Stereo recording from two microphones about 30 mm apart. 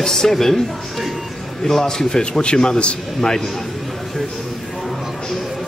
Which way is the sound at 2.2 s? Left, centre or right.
Left.